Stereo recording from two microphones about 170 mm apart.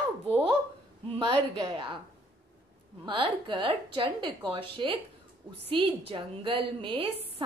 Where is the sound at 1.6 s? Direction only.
30° right (ahead or behind).